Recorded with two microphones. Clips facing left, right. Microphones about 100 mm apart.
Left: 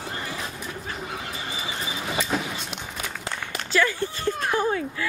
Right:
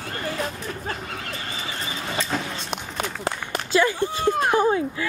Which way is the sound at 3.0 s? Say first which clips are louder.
Right 5 dB; 50° right (ahead or behind).